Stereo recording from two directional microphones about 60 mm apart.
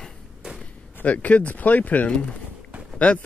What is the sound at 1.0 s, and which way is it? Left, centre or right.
Speech, left.